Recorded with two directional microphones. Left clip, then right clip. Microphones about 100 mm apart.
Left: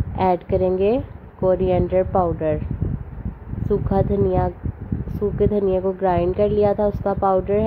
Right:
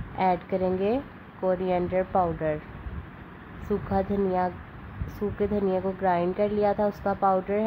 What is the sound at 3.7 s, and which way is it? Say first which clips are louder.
A woman's voice: left 7 dB; 25° left (ahead or behind).